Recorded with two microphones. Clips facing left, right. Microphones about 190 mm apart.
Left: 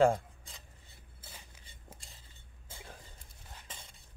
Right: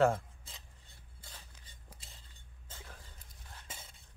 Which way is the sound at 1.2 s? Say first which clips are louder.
Left 1 dB; 10° left (ahead or behind).